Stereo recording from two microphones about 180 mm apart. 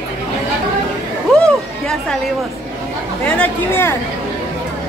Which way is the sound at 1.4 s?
5° left (ahead or behind).